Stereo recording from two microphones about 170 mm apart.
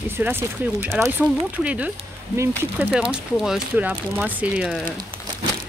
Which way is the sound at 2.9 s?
5° right (ahead or behind).